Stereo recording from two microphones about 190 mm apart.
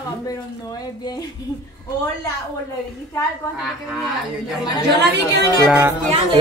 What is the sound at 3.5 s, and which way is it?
Speech, 5° right (ahead or behind).